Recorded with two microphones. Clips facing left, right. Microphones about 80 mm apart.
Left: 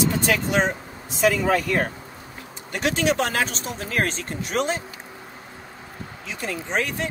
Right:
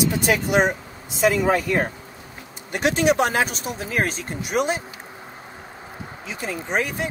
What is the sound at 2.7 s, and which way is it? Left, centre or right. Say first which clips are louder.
Speech: right 3 dB; centre.